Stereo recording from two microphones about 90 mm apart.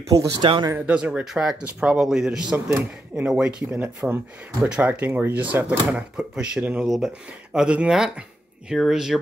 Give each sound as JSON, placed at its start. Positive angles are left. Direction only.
{"t": 0.1, "sound": "speech", "side_deg": -40}
{"t": 0.4, "sound": "speech", "side_deg": -65}
{"t": 0.7, "sound": "speech", "side_deg": -15}